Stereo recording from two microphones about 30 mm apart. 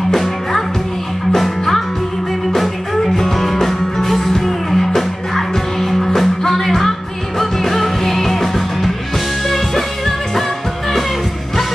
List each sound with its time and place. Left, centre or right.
0.1 s music: centre